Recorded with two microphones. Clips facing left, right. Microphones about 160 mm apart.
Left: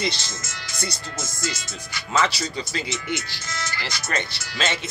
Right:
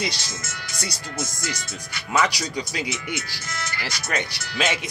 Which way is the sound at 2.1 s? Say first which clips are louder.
Even; 10° right (ahead or behind).